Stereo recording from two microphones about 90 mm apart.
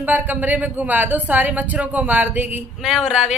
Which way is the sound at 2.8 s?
5° right (ahead or behind).